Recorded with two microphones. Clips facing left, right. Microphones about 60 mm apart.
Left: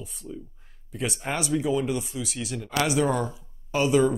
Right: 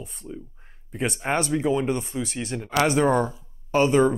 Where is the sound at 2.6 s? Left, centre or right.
Right.